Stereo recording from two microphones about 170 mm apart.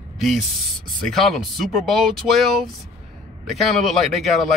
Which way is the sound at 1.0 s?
Centre (ahead or behind).